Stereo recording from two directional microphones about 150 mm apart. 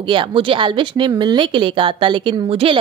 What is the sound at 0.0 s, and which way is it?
A woman's voice, 35° right (ahead or behind).